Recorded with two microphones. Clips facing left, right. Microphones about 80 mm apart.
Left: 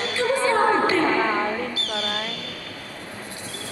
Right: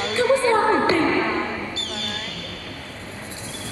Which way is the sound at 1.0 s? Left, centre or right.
Left.